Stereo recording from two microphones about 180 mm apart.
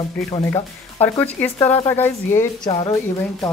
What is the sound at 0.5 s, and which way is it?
Speech, 10° left (ahead or behind).